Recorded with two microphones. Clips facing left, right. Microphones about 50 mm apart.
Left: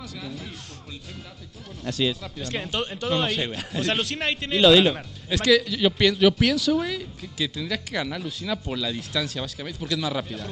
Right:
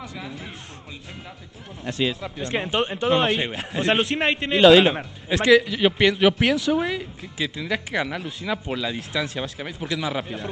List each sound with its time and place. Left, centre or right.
1.9 s a man's voice: centre